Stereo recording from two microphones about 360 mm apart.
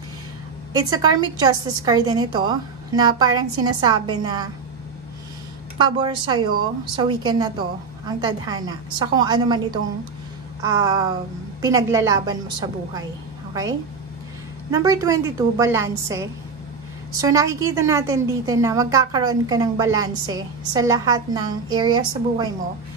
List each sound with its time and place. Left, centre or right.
0.7 s a woman's voice: centre
5.9 s a woman's voice: centre